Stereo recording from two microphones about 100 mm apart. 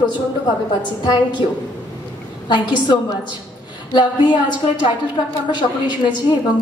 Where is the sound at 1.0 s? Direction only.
50° left (ahead or behind).